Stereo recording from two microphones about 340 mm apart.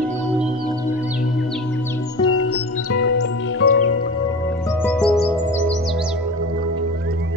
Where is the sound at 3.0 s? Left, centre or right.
Left.